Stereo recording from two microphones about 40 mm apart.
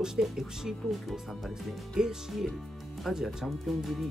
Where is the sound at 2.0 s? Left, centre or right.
Centre.